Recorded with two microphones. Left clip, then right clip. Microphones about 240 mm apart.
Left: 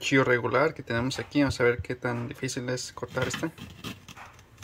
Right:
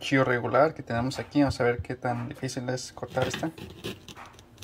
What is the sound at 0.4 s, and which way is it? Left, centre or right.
Speech, centre.